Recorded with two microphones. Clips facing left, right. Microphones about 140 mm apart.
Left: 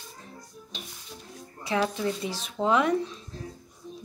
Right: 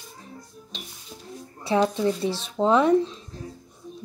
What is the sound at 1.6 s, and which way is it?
Speech, 30° right (ahead or behind).